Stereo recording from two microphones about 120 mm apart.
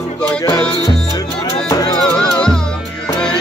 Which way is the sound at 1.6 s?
30° left (ahead or behind).